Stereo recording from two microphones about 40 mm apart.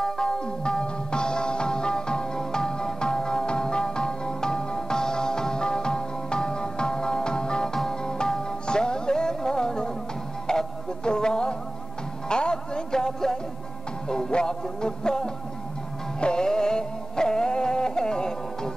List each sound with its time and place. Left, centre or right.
0.0 s music: centre